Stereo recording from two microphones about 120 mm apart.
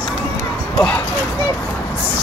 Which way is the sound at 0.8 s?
10° left (ahead or behind).